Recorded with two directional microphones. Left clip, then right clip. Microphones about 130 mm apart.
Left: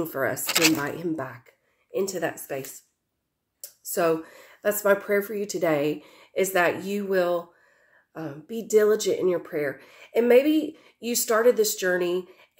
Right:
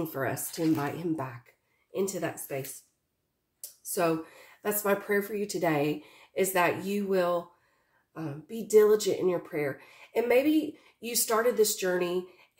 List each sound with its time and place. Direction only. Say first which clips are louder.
0.0 s speech: left 6 dB; 15° right (ahead or behind)
4.6 s speech: left 7 dB; 15° right (ahead or behind)